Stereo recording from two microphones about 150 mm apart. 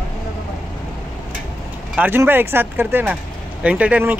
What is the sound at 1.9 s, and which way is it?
Speech, 15° right (ahead or behind).